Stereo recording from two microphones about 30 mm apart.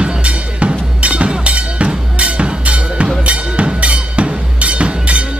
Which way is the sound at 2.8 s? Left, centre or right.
Right.